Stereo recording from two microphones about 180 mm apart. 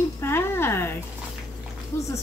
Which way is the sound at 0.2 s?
15° left (ahead or behind).